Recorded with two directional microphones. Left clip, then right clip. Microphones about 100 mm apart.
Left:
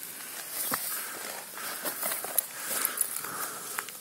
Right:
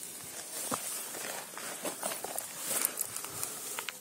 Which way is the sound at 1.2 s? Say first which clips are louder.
Left 1 dB; 35° left (ahead or behind).